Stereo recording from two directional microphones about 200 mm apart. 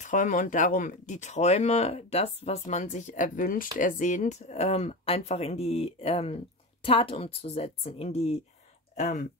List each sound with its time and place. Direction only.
0.0 s speech: 40° left (ahead or behind)